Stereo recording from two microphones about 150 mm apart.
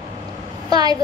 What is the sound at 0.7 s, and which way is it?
Speech, 25° right (ahead or behind).